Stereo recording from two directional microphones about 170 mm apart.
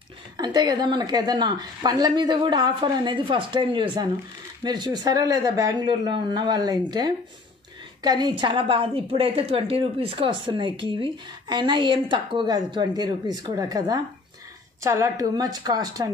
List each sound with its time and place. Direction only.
0.4 s a woman's voice: 25° right (ahead or behind)